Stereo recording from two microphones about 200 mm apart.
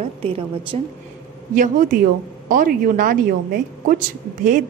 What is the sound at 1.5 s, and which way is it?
Speech, 40° right (ahead or behind).